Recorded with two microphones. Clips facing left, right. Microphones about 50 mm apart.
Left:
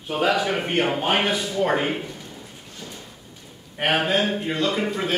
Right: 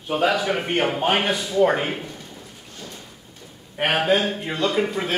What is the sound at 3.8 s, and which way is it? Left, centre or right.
Speech, centre.